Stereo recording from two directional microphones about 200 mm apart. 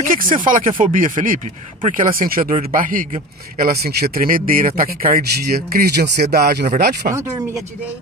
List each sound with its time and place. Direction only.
0.1 s speech: 45° right (ahead or behind)
7.2 s speech: 15° right (ahead or behind)